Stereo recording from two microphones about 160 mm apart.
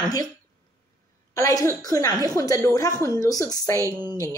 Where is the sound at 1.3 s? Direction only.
20° left (ahead or behind).